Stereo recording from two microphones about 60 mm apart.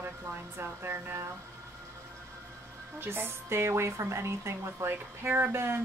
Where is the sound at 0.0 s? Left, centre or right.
Right.